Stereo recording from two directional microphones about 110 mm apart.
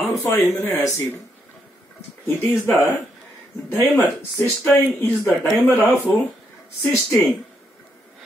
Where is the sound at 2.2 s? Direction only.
25° left (ahead or behind).